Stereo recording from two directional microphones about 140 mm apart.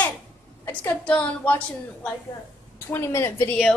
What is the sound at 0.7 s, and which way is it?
Speech, 10° left (ahead or behind).